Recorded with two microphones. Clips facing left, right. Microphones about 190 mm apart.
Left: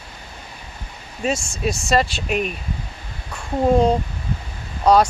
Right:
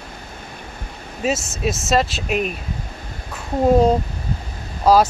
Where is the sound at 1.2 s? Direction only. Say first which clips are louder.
Right 1 dB; 5° right (ahead or behind).